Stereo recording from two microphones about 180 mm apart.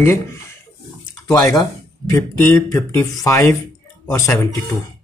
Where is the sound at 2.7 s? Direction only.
15° left (ahead or behind).